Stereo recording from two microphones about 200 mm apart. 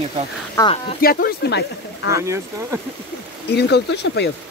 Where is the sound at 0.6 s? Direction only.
25° left (ahead or behind).